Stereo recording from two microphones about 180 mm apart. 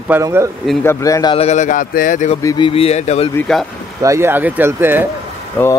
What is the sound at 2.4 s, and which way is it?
Speech, 20° left (ahead or behind).